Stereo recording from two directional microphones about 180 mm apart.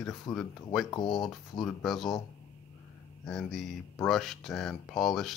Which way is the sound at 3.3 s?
Centre (ahead or behind).